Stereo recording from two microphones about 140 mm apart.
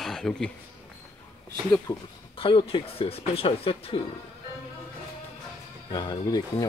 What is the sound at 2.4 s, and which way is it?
Speech, 40° left (ahead or behind).